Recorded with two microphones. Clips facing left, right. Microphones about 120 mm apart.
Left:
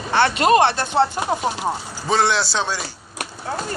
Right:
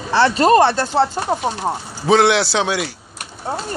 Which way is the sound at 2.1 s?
70° right (ahead or behind).